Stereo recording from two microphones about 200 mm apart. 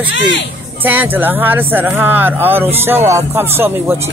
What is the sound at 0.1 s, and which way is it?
Speech, 65° left (ahead or behind).